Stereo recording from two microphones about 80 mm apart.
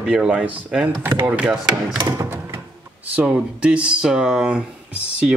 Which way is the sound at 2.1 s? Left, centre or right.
Right.